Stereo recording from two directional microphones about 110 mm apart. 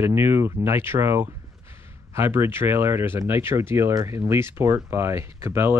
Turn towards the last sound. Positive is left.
turn(degrees=-20)  # may be behind; listen again after turning